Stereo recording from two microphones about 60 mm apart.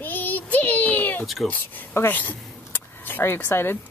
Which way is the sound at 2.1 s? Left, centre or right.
Left.